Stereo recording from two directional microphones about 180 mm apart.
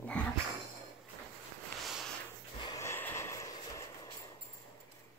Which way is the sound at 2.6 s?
20° left (ahead or behind).